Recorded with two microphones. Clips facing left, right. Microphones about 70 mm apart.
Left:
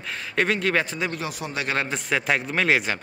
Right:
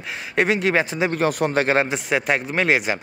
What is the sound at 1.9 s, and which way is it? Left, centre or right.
Speech, centre.